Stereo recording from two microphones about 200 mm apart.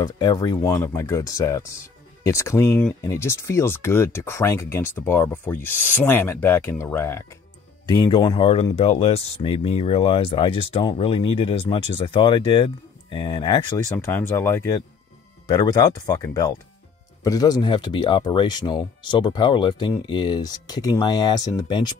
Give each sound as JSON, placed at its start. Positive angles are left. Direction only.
{"t": 0.0, "sound": "speech", "side_deg": 20}
{"t": 13.9, "sound": "speech", "side_deg": 10}